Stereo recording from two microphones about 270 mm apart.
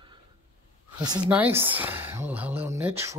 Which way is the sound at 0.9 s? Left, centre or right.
Centre.